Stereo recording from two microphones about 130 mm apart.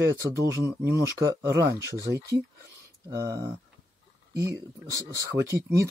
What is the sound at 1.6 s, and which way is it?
Speech, 25° right (ahead or behind).